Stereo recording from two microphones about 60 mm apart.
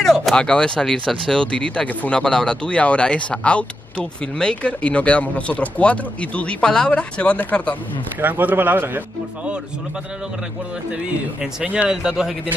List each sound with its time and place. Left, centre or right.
0.0 s a sound: centre
0.4 s speech: centre
6.6 s speech: centre
8.2 s a man's voice: right
11.6 s speech: centre